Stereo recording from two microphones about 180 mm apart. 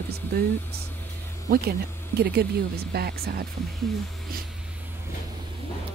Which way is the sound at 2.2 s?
60° right (ahead or behind).